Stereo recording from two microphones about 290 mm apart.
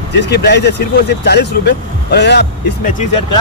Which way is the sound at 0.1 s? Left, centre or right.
Left.